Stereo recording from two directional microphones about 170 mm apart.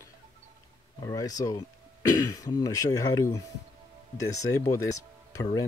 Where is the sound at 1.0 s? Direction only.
20° left (ahead or behind).